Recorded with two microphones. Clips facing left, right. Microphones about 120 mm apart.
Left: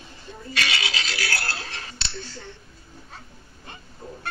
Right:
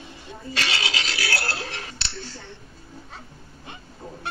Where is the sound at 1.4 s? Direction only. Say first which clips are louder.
Right 3 dB; 15° right (ahead or behind).